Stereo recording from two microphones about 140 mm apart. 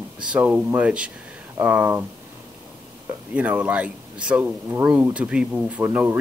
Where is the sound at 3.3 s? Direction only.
10° right (ahead or behind).